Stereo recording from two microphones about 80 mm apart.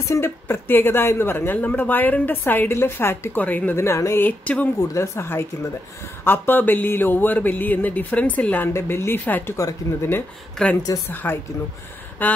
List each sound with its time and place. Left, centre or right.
0.1 s a woman's voice: left
3.7 s speech: left
4.2 s a woman's voice: left
4.9 s a woman's voice: left; by 8.6 s centre
8.7 s speech: left
9.6 s speech: left
10.6 s a woman's voice: centre
11.3 s a woman's voice: left